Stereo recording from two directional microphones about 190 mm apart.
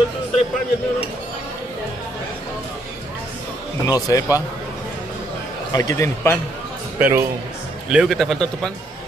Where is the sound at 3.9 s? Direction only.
20° left (ahead or behind).